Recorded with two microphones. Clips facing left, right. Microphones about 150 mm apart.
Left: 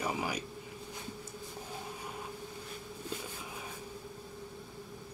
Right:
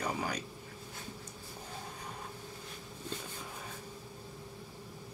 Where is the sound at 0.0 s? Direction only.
5° left (ahead or behind).